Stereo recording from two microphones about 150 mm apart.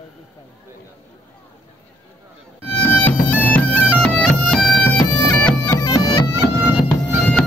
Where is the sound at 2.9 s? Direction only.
10° left (ahead or behind).